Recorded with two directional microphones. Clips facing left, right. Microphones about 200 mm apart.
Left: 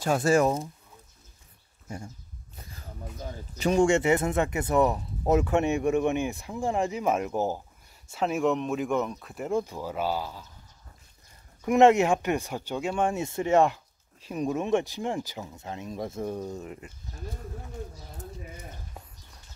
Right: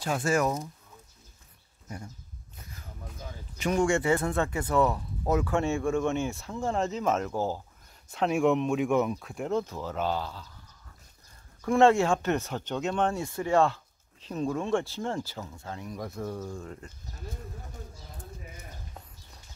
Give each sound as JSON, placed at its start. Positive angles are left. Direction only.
{"t": 0.0, "sound": "speech", "side_deg": 40}
{"t": 3.3, "sound": "speech", "side_deg": 35}
{"t": 3.7, "sound": "speech", "side_deg": 20}
{"t": 8.1, "sound": "speech", "side_deg": 5}
{"t": 11.6, "sound": "speech", "side_deg": 20}
{"t": 13.1, "sound": "speech", "side_deg": 20}